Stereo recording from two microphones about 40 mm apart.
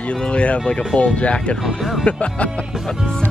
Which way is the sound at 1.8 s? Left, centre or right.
Centre.